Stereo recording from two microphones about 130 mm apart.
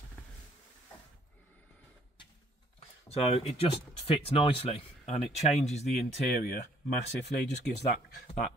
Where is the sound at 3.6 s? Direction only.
50° left (ahead or behind).